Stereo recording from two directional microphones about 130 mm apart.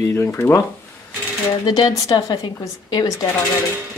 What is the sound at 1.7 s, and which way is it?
A woman's voice, 30° left (ahead or behind).